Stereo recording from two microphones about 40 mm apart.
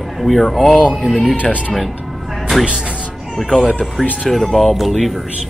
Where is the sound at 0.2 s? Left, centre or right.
Centre.